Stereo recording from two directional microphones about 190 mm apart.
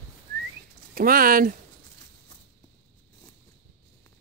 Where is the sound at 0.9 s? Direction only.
50° right (ahead or behind).